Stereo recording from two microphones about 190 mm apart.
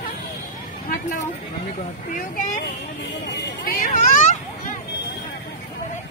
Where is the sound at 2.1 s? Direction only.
45° left (ahead or behind).